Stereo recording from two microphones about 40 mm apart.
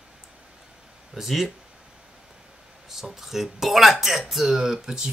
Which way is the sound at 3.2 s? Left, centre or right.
Centre.